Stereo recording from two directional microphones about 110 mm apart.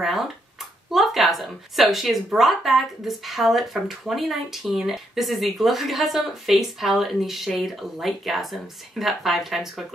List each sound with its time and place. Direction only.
0.0 s a woman's voice: centre (ahead or behind)